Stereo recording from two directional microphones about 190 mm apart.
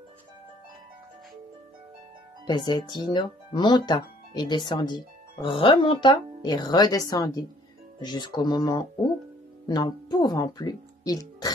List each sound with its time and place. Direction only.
2.4 s speech: 20° left (ahead or behind)